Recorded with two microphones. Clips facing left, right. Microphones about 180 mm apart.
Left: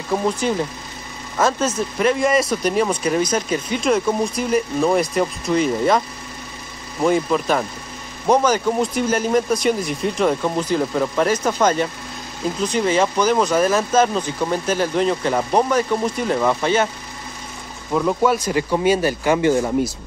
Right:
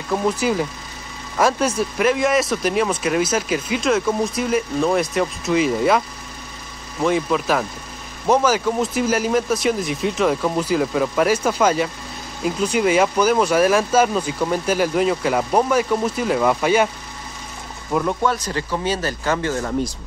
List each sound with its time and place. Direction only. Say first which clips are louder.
0.1 s speech: even; centre (ahead or behind)
1.4 s speech: right 1 dB; 10° right (ahead or behind)
17.9 s speech: left 2 dB; 5° left (ahead or behind)